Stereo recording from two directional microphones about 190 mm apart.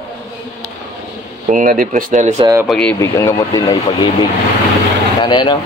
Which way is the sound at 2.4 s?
15° right (ahead or behind).